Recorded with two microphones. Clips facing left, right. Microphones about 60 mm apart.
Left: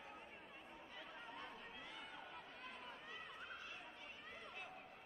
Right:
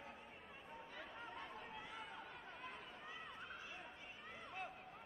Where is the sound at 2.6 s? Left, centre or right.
Centre.